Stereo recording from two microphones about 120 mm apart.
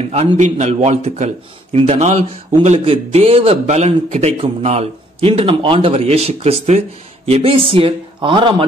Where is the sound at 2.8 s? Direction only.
55° right (ahead or behind).